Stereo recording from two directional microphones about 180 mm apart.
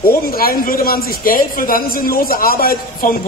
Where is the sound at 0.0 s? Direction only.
55° left (ahead or behind).